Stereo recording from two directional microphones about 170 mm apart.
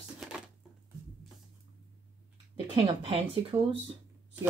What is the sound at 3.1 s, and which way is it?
Speech, 35° right (ahead or behind).